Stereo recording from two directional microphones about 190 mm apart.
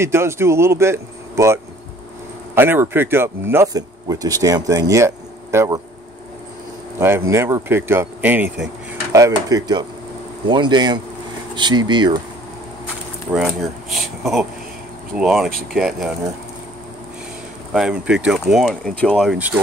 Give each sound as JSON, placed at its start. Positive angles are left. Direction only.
{"t": 0.0, "sound": "speech", "side_deg": -15}
{"t": 7.0, "sound": "speech", "side_deg": -15}
{"t": 13.3, "sound": "speech", "side_deg": 0}
{"t": 17.7, "sound": "speech", "side_deg": -5}
{"t": 19.3, "sound": "speech", "side_deg": -10}